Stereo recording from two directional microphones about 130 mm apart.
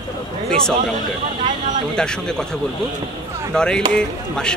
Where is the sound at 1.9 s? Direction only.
5° left (ahead or behind).